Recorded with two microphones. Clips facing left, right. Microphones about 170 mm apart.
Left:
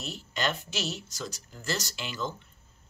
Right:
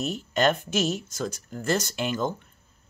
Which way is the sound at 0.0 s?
50° right (ahead or behind).